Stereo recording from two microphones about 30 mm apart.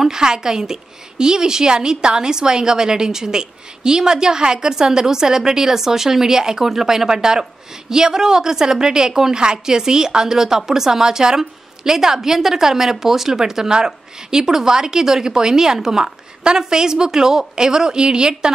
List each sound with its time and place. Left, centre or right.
0.1 s a woman's voice: right